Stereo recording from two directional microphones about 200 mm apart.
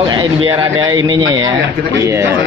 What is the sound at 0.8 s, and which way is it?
Speech, 20° right (ahead or behind).